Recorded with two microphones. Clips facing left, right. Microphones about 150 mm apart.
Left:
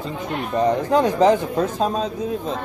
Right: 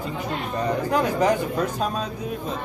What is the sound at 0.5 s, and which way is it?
Speech, 30° left (ahead or behind).